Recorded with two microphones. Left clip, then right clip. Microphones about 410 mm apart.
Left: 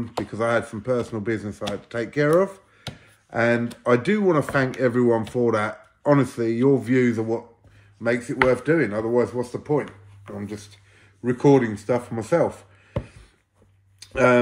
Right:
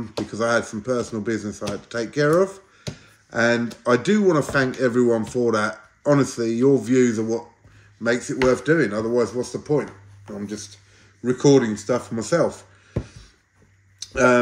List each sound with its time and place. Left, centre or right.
0.3 s speech: centre
14.1 s speech: centre